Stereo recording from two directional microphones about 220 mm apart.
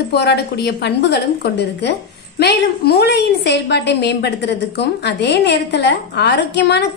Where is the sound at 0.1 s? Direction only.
50° left (ahead or behind).